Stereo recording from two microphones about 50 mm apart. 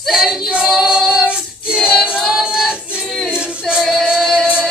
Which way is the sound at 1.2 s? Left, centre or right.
Centre.